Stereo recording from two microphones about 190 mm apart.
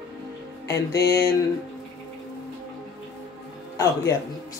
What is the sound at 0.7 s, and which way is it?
Speech, 15° left (ahead or behind).